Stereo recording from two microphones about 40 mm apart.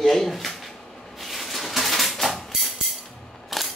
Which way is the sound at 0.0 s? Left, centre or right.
Centre.